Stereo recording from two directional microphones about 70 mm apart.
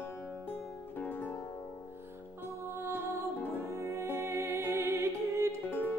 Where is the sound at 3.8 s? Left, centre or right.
Right.